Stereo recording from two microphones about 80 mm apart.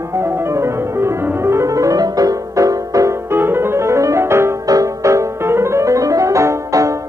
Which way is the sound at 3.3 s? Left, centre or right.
Right.